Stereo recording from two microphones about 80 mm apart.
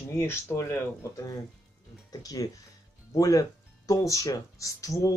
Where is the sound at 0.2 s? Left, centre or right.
Left.